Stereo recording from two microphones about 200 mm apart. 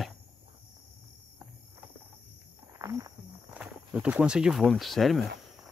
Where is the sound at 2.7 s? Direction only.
15° right (ahead or behind); by 5.6 s centre (ahead or behind).